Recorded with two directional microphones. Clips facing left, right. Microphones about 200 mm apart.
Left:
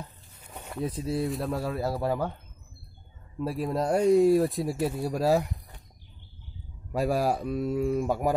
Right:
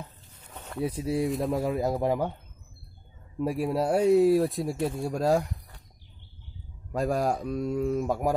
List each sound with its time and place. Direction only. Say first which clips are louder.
0.3 s a sound: left 1 dB; 10° left (ahead or behind)
0.7 s speech: right 2 dB; 10° right (ahead or behind)
3.3 s speech: right 2 dB; 15° right (ahead or behind); by 5.5 s 5° left (ahead or behind)
6.9 s speech: left 1 dB; 5° left (ahead or behind)